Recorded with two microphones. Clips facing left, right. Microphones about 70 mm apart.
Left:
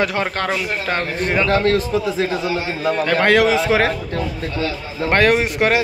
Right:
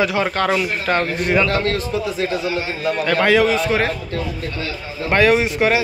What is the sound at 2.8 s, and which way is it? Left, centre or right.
Speech, left.